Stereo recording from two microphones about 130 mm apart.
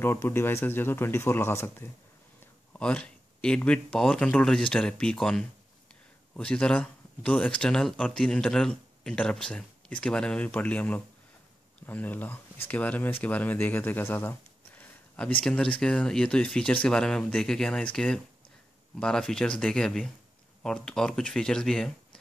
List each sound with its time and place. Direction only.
0.0 s speech: 20° left (ahead or behind)
2.4 s speech: 10° left (ahead or behind)
14.8 s a sound: 10° left (ahead or behind)
15.4 s speech: 5° left (ahead or behind)